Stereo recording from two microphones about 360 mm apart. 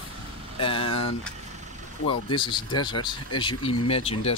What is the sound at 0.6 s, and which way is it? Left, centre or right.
Speech, centre.